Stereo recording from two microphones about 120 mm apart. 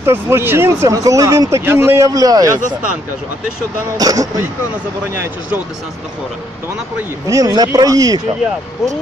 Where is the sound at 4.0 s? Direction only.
30° right (ahead or behind).